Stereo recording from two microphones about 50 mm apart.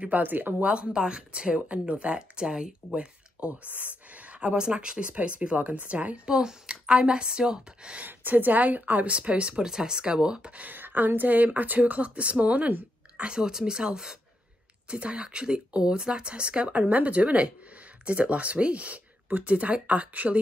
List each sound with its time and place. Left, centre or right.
0.0 s speech: right
0.7 s speech: centre
2.9 s a sound: right
4.4 s speech: centre
6.2 s speech: centre
8.0 s speech: right
10.7 s speech: right
13.3 s speech: centre; by 20.3 s right